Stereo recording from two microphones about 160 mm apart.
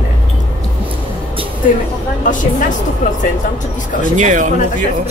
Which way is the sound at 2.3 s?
55° left (ahead or behind).